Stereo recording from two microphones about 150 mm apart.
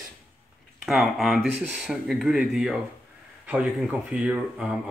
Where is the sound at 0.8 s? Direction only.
Centre (ahead or behind).